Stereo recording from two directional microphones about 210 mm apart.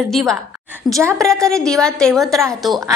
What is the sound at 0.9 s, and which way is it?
Speech, 15° right (ahead or behind).